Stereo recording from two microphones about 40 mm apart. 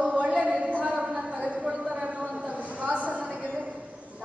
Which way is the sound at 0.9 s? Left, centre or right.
Centre.